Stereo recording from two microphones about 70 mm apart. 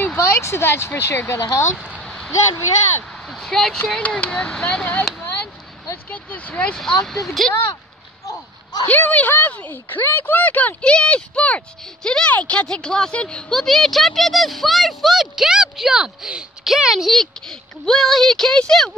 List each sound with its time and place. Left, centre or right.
0.3 s speech: left
2.0 s a sound: centre
3.3 s speech: centre
3.7 s speech: centre
5.2 s a sound: left
6.0 s speech: left
6.8 s a woman's voice: centre
8.8 s a woman's voice: left; by 17.1 s centre
17.1 s a woman's voice: centre